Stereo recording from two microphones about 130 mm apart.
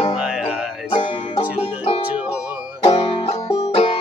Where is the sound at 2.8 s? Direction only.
40° left (ahead or behind).